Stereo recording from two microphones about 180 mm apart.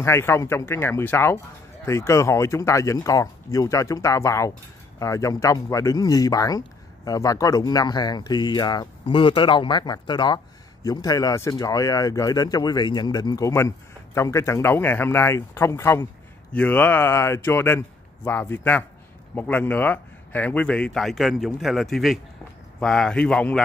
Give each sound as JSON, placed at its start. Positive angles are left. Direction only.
{"t": 0.0, "sound": "a man's voice", "side_deg": 15}